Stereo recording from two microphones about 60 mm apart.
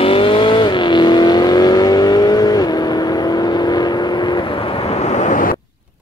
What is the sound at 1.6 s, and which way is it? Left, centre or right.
Vehicle, left.